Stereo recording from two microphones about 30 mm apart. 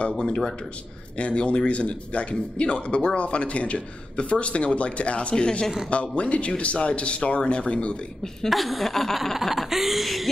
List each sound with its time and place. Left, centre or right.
1.1 s speech: left
5.3 s speech: left
5.9 s speech: left
8.5 s speech: centre